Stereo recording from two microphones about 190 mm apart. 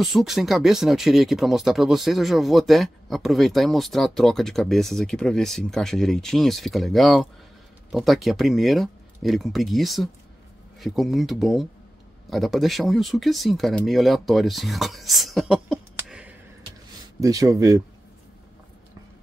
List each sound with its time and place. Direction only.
0.0 s speech: centre (ahead or behind)
17.2 s speech: 20° right (ahead or behind)